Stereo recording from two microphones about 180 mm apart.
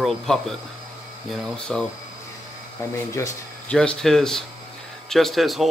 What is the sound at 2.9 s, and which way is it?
Speech, 15° left (ahead or behind).